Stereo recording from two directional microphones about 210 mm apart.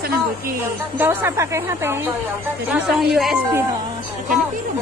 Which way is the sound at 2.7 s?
Centre (ahead or behind).